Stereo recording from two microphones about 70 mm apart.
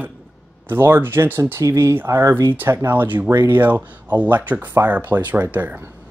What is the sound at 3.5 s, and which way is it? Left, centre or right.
Speech, right.